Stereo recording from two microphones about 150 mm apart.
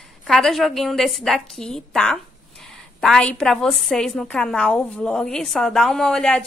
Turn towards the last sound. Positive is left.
turn(degrees=5)  # may be behind; listen again after turning